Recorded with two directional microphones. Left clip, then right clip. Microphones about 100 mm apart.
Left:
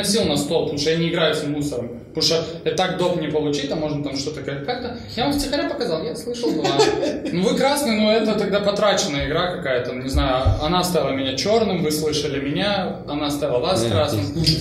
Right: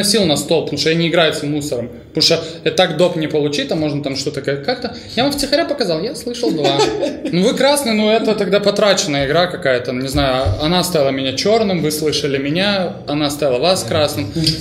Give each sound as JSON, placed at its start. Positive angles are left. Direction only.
{"t": 0.0, "sound": "speech", "side_deg": -30}
{"t": 6.6, "sound": "speech", "side_deg": -15}
{"t": 7.3, "sound": "speech", "side_deg": -25}